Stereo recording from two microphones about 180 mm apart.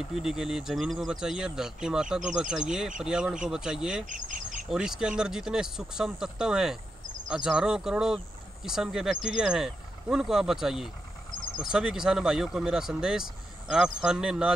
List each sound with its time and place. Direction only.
0.0 s speech: 5° right (ahead or behind)
4.0 s bird: 45° right (ahead or behind)
4.6 s speech: 5° right (ahead or behind)